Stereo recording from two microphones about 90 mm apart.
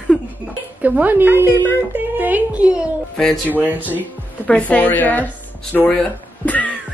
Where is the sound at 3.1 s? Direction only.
5° left (ahead or behind).